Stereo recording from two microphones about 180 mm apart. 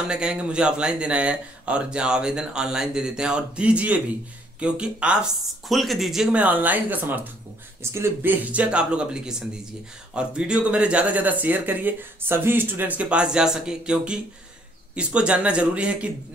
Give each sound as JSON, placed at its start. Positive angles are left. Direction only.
{"t": 0.0, "sound": "speech", "side_deg": -5}